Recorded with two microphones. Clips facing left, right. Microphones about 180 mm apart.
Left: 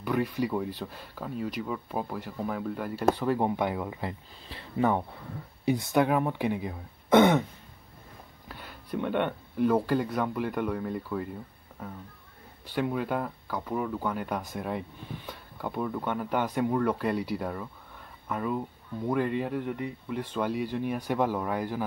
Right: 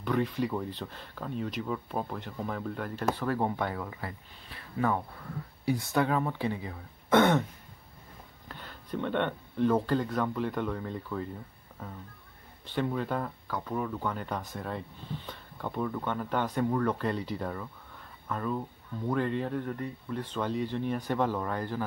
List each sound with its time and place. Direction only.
0.0 s speech: 10° left (ahead or behind)
8.5 s speech: 10° left (ahead or behind)
12.6 s speech: 10° left (ahead or behind)